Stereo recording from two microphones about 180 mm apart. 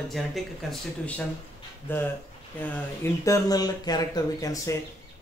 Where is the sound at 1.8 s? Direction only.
10° left (ahead or behind).